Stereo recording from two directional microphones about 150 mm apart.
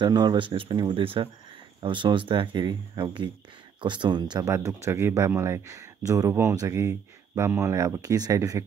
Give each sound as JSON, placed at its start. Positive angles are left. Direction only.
{"t": 0.0, "sound": "speech", "side_deg": -30}